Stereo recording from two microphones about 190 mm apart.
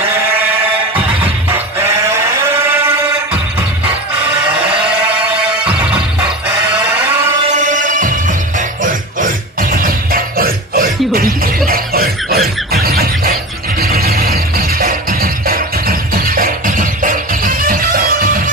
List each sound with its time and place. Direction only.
0.9 s music: 10° right (ahead or behind)
2.0 s sheep: 15° right (ahead or behind)
4.6 s a sound: 5° right (ahead or behind)
6.7 s sheep: 10° right (ahead or behind)
7.5 s music: 40° right (ahead or behind)
12.7 s squeal: 55° right (ahead or behind)
13.7 s music: 50° right (ahead or behind)